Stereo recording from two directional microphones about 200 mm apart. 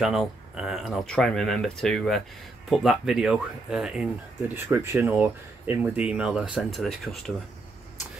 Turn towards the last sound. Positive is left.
turn(degrees=0)  # may be behind; listen again after turning